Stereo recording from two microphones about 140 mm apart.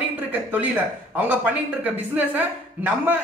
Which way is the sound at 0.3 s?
10° right (ahead or behind).